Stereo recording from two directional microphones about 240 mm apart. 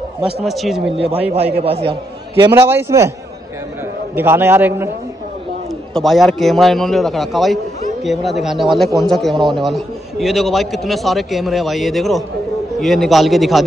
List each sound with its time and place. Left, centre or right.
0.2 s a man's voice: centre
0.9 s a man's voice: right
4.1 s a man's voice: centre
5.9 s a man's voice: centre